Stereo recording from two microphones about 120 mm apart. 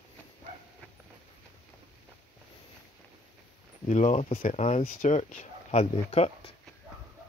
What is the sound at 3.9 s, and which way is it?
Speech, 75° left (ahead or behind).